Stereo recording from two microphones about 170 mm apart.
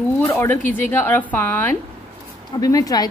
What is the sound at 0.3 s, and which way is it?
A woman's voice, 15° left (ahead or behind).